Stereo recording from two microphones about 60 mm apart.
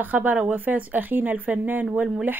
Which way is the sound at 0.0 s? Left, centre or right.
Right.